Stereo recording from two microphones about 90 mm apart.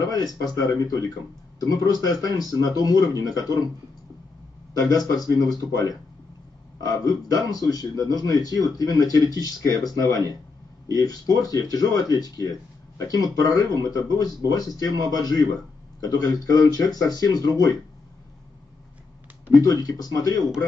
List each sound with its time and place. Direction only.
0.0 s speech: 45° left (ahead or behind)
4.8 s speech: 45° left (ahead or behind)
19.6 s speech: 45° left (ahead or behind)